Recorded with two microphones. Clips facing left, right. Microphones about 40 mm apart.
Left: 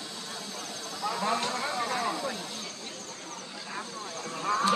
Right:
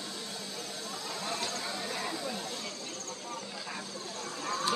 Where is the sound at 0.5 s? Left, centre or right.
Left.